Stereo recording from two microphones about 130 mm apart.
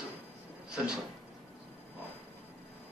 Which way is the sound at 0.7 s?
5° right (ahead or behind).